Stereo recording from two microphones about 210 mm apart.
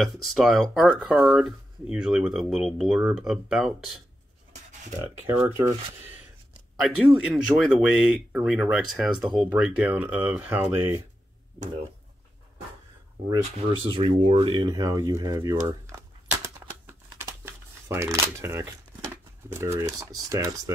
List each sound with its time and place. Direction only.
0.0 s speech: centre (ahead or behind)
5.0 s speech: 10° right (ahead or behind)
6.8 s speech: 5° right (ahead or behind)
13.3 s speech: 25° right (ahead or behind)
16.8 s crumpling: 10° right (ahead or behind)